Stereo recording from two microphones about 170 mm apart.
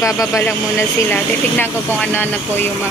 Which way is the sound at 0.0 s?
20° left (ahead or behind).